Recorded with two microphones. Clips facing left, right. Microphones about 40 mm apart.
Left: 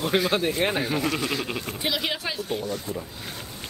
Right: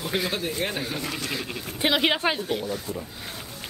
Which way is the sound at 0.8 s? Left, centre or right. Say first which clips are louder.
Left 5 dB; centre.